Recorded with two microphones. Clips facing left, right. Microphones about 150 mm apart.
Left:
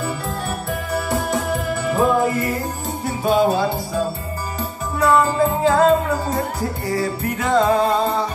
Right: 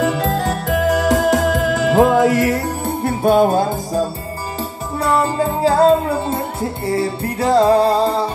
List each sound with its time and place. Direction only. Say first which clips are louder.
0.0 s music: right 8 dB; 90° right; by 4.0 s 45° right (ahead or behind)
4.6 s music: left 2 dB; 30° right (ahead or behind)